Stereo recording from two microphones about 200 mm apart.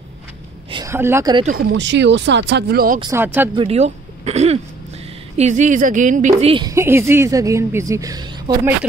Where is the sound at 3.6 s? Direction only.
30° right (ahead or behind).